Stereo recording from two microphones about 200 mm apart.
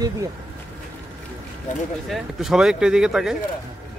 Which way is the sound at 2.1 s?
Centre (ahead or behind).